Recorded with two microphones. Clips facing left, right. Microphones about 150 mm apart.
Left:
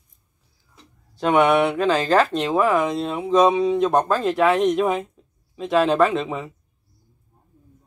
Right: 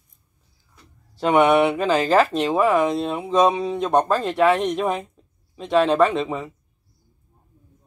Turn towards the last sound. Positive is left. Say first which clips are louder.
# even
turn(degrees=0)  # may be behind; listen again after turning